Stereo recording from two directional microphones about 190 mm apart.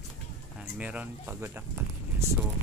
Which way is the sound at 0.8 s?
5° right (ahead or behind).